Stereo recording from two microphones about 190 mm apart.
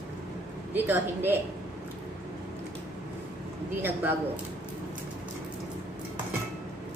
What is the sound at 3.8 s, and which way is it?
Speech, 10° right (ahead or behind).